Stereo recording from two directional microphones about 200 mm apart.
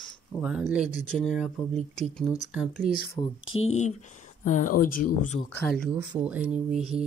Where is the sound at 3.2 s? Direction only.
25° left (ahead or behind).